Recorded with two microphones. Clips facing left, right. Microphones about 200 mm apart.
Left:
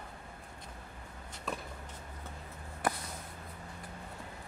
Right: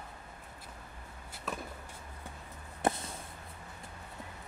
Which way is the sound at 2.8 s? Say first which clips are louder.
Right 3 dB; 25° right (ahead or behind).